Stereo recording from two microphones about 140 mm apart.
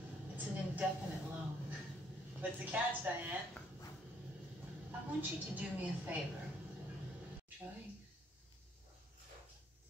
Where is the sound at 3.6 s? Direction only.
5° left (ahead or behind).